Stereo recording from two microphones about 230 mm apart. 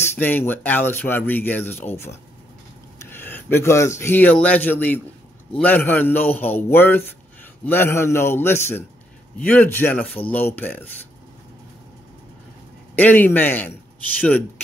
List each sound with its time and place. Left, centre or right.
0.0 s speech: centre
12.9 s speech: centre